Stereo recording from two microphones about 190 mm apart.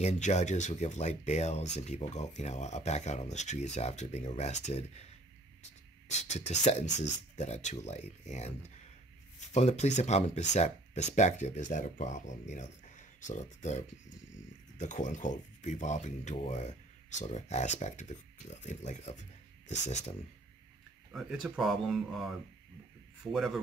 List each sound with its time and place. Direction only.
0.0 s speech: 35° left (ahead or behind)
6.0 s speech: 35° left (ahead or behind)
21.1 s speech: centre (ahead or behind)
23.3 s speech: centre (ahead or behind)